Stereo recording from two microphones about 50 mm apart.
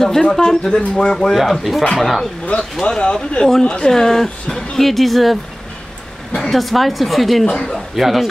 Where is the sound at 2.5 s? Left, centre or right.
Left; by 5.3 s centre.